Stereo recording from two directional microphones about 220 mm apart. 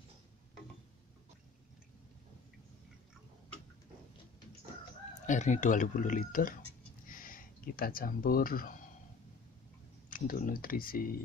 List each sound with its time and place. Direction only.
5.2 s speech: 35° left (ahead or behind)
7.1 s a sound: 40° left (ahead or behind)
10.0 s speech: 40° left (ahead or behind)